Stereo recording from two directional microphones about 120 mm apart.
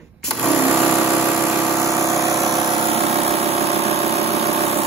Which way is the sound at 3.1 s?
60° right (ahead or behind).